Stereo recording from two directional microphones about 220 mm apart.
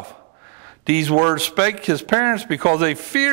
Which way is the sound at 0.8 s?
15° right (ahead or behind).